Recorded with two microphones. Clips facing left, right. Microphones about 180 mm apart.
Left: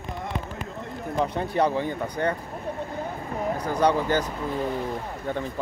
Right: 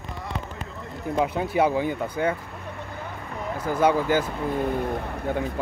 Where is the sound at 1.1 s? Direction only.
5° right (ahead or behind).